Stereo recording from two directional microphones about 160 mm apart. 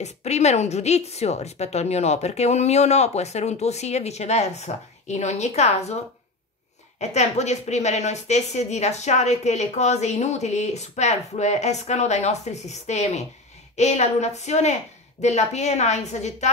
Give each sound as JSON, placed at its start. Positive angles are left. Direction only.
{"t": 0.0, "sound": "a woman's voice", "side_deg": 45}
{"t": 7.0, "sound": "a woman's voice", "side_deg": 45}